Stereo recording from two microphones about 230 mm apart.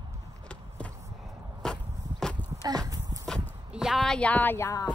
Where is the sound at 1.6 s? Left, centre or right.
Centre.